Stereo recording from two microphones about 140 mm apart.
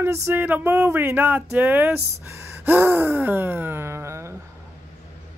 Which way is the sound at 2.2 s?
15° right (ahead or behind).